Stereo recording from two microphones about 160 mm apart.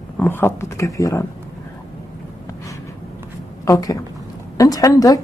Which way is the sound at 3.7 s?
20° left (ahead or behind).